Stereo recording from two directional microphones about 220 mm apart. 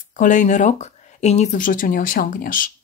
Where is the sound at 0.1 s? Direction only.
35° left (ahead or behind).